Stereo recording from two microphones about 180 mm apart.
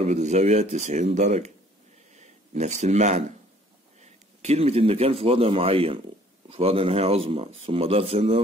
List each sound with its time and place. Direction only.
0.0 s speech: 40° right (ahead or behind)